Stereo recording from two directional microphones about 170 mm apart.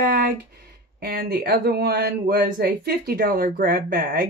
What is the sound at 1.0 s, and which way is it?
Speech, 65° right (ahead or behind).